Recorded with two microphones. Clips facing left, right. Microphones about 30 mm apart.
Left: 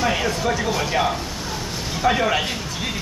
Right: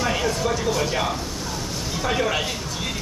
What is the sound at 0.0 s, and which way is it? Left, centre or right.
Speech, centre.